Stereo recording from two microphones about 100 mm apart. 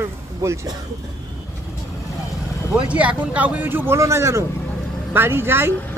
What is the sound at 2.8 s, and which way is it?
Speech, 15° right (ahead or behind).